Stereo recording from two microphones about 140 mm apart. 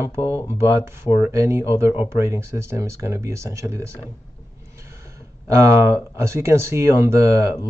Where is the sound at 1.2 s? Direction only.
20° right (ahead or behind).